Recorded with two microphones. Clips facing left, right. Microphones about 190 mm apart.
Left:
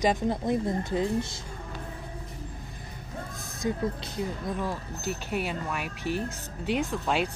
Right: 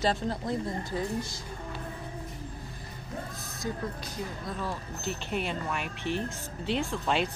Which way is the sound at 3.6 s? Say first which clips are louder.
Left 5 dB; 20° left (ahead or behind).